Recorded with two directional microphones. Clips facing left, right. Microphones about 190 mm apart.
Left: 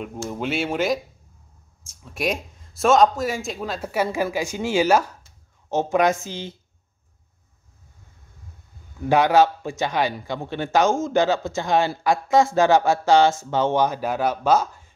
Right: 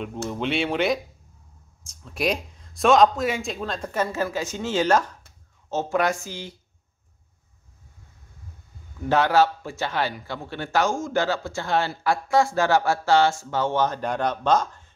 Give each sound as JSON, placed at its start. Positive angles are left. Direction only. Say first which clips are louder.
{"t": 0.3, "sound": "speech", "louder": "even", "side_deg": 5}
{"t": 2.0, "sound": "a man's voice", "louder": "even", "side_deg": 0}
{"t": 9.1, "sound": "a man's voice", "louder": "left 3 dB", "side_deg": 15}